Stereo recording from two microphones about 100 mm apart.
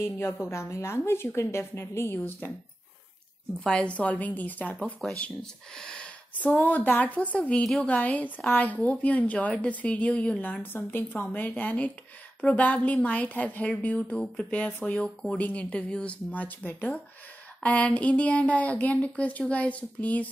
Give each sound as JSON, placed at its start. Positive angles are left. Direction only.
{"t": 0.5, "sound": "a woman's voice", "side_deg": 30}
{"t": 3.6, "sound": "a woman's voice", "side_deg": 10}